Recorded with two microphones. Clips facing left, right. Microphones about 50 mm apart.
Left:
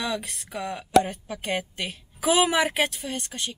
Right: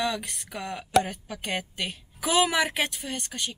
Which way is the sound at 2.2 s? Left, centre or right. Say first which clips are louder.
Left 2 dB; centre.